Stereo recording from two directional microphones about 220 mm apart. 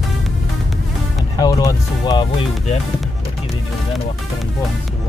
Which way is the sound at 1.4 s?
15° left (ahead or behind).